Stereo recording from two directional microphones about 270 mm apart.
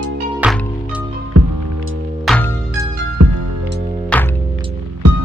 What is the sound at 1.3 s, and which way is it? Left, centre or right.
Music, right.